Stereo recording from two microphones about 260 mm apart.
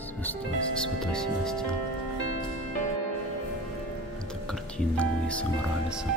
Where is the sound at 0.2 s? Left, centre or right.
Centre.